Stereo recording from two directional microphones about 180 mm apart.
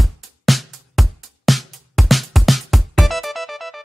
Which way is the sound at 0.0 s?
Centre (ahead or behind).